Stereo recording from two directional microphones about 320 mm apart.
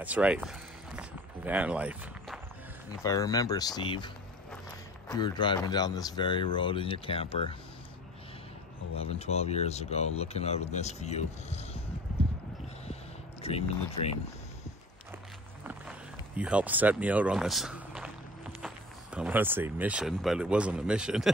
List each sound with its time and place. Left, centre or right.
0.0 s run: centre
3.0 s speech: centre
9.0 s speech: centre
13.4 s speech: centre
15.6 s a sound: centre
19.1 s speech: centre